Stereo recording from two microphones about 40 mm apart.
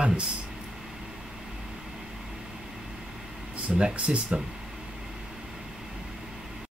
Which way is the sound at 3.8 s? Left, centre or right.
Right.